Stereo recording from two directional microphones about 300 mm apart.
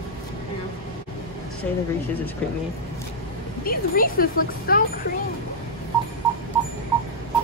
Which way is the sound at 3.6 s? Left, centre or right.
Left.